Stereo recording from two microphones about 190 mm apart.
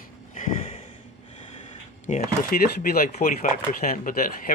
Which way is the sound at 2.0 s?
45° left (ahead or behind).